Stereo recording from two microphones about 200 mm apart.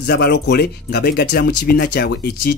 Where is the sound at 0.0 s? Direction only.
50° left (ahead or behind).